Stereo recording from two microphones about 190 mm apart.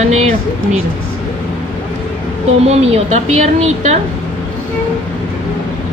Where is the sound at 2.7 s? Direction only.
35° right (ahead or behind).